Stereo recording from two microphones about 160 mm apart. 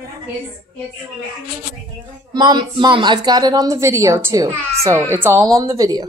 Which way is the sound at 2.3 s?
25° right (ahead or behind).